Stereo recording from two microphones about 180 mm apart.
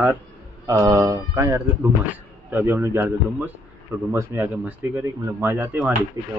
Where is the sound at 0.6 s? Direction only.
15° right (ahead or behind).